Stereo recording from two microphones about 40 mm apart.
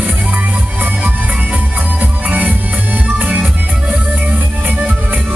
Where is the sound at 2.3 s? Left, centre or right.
Right.